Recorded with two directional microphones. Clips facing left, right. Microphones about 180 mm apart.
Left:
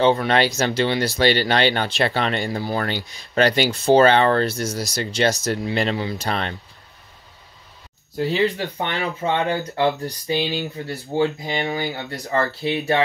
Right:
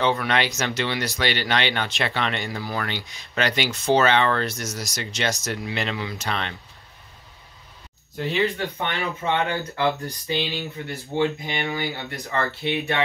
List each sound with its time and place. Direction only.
0.0 s speech: 30° left (ahead or behind)
8.2 s speech: 30° left (ahead or behind)